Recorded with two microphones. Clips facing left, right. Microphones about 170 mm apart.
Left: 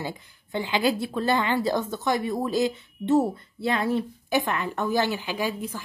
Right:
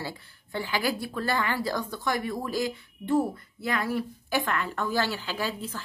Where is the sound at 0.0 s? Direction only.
20° left (ahead or behind).